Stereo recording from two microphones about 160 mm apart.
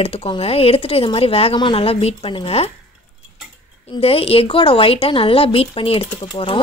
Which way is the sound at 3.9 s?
35° left (ahead or behind).